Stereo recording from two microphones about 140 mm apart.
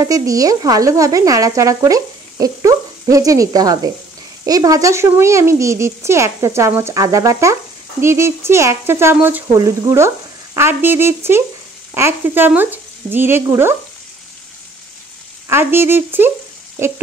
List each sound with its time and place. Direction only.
0.0 s sizzle: 25° right (ahead or behind)
9.5 s sizzle: 25° right (ahead or behind)
11.9 s speech: 15° right (ahead or behind)
15.4 s speech: 15° right (ahead or behind)